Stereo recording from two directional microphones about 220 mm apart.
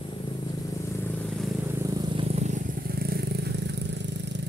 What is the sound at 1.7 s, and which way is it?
Vehicle, 15° right (ahead or behind).